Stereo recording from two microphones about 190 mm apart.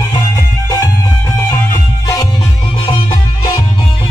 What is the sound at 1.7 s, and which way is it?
Music, 20° left (ahead or behind).